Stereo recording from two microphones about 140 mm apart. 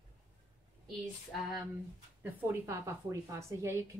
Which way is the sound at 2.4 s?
15° right (ahead or behind).